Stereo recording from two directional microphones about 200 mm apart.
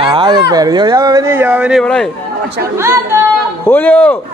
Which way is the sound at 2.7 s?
15° right (ahead or behind).